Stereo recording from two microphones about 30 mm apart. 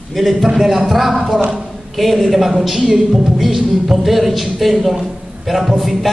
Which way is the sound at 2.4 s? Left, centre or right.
Centre.